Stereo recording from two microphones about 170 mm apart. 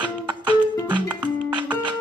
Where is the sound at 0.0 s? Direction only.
30° right (ahead or behind).